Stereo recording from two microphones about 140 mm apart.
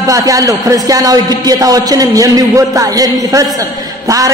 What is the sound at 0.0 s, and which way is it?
A man's voice, 25° right (ahead or behind).